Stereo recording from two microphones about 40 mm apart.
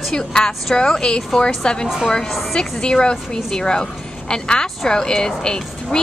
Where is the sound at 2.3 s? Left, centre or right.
Centre.